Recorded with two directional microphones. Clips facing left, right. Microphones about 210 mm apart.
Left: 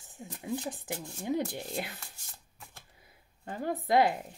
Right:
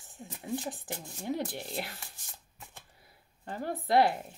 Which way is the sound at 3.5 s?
15° left (ahead or behind).